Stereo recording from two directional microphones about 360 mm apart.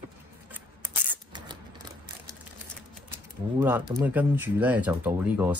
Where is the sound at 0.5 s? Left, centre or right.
Centre.